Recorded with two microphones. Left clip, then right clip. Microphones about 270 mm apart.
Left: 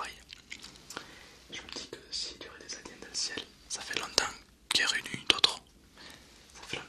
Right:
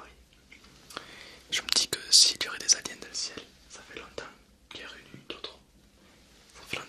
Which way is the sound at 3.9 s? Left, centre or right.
Left.